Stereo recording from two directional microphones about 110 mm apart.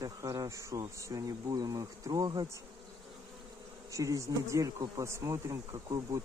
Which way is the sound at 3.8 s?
30° right (ahead or behind).